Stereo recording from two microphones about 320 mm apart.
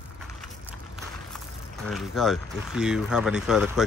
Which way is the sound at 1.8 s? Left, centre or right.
Centre.